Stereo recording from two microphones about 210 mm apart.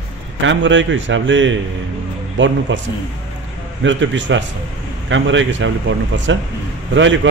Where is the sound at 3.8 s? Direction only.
60° right (ahead or behind).